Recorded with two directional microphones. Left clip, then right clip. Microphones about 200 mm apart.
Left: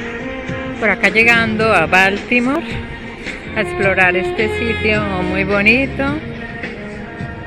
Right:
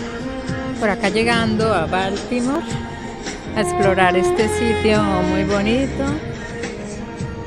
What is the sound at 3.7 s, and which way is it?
Speech, 20° right (ahead or behind).